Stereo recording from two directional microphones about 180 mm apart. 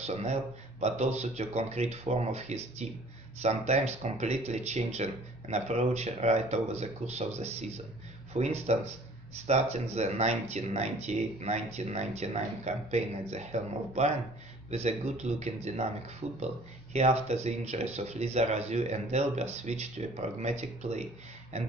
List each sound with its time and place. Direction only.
0.0 s speech: 35° right (ahead or behind)